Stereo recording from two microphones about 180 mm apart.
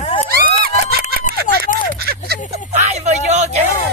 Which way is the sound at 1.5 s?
45° left (ahead or behind).